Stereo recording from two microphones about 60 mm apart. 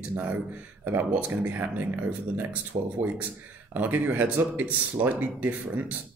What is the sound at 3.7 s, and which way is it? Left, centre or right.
Speech, right.